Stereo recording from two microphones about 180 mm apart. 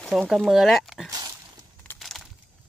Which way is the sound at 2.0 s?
Centre (ahead or behind).